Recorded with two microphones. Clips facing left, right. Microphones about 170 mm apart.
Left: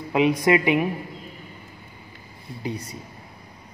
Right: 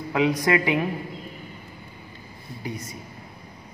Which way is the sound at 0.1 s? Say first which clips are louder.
Left 3 dB; 25° left (ahead or behind).